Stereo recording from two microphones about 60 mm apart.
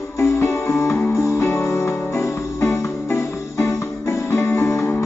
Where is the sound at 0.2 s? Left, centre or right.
Left.